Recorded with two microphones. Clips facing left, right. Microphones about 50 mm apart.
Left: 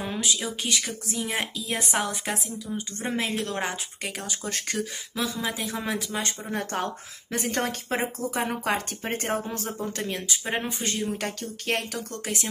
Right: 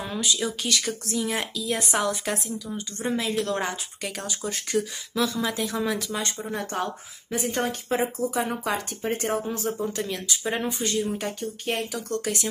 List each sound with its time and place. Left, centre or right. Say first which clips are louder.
0.2 s a woman's voice: right 5 dB; left
4.5 s speech: right 4 dB; left
5.1 s a woman's voice: right 4 dB; centre
5.6 s speech: right 3 dB; left
7.9 s speech: right 5 dB; left
11.1 s speech: right 2 dB; left